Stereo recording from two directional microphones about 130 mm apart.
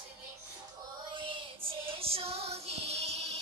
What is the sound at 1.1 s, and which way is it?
Music, 40° right (ahead or behind).